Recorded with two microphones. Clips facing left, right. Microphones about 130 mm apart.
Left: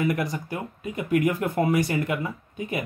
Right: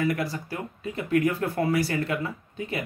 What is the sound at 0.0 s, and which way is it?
Speech, 20° left (ahead or behind).